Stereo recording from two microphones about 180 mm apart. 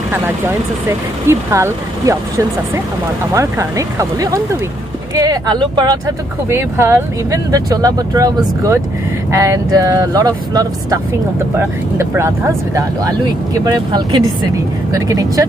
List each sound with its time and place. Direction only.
1.2 s speech: 15° right (ahead or behind)
12.0 s speech: 15° right (ahead or behind)